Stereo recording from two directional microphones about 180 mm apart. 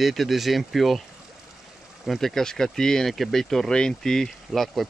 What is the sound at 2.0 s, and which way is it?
Speech, centre (ahead or behind).